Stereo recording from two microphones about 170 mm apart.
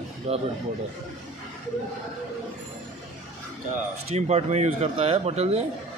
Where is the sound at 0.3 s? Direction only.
40° right (ahead or behind).